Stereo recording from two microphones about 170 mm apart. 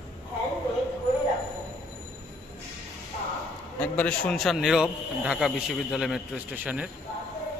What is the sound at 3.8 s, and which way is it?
A man's voice, 5° left (ahead or behind).